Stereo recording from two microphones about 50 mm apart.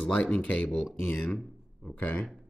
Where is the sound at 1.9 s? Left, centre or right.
Left.